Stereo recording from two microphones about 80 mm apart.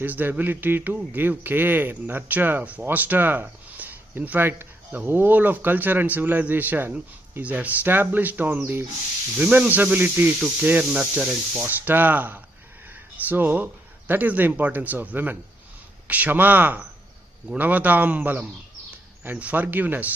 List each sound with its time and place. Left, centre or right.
0.0 s speech: right
11.6 s speech: right